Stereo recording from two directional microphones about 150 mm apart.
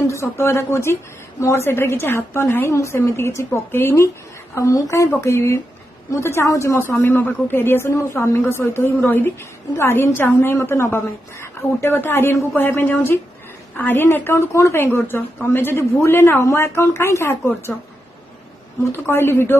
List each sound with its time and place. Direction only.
0.0 s a woman's voice: 20° left (ahead or behind)
18.9 s a woman's voice: 15° left (ahead or behind)